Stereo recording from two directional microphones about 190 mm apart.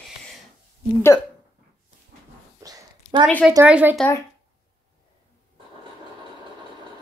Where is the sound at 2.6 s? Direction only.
20° right (ahead or behind).